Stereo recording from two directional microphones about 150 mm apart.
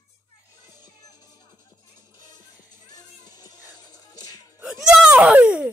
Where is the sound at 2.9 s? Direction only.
25° left (ahead or behind).